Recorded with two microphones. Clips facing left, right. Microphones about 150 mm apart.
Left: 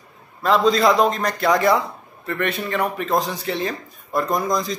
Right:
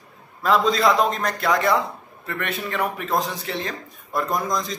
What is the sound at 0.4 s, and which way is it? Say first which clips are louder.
Speech: left 2 dB; centre (ahead or behind).